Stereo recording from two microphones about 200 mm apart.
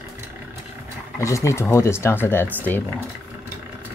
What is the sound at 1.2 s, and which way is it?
Speech, 15° left (ahead or behind).